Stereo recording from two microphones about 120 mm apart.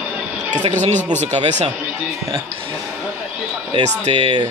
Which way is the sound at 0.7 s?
75° right (ahead or behind).